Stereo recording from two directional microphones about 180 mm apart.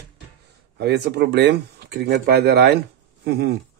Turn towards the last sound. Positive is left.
turn(degrees=-65)  # may be behind; listen again after turning